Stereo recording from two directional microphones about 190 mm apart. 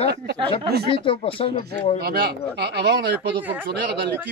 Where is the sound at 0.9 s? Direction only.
30° left (ahead or behind).